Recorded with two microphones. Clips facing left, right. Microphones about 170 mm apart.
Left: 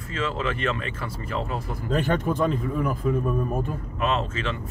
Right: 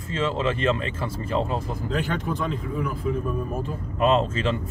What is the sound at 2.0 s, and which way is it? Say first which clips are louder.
Speech: left 4 dB; 50° left (ahead or behind).